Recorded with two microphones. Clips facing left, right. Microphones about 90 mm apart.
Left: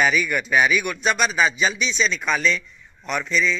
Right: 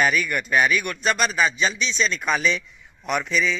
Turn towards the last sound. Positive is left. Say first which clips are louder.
# even
turn(degrees=-5)  # may be behind; listen again after turning